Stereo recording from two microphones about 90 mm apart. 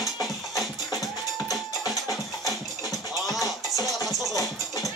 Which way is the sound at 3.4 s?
40° left (ahead or behind).